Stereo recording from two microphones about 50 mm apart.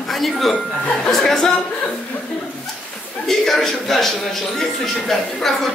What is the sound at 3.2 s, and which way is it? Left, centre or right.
A man's voice, centre.